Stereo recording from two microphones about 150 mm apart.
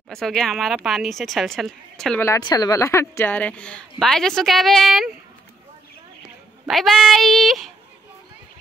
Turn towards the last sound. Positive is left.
turn(degrees=0)  # may be behind; listen again after turning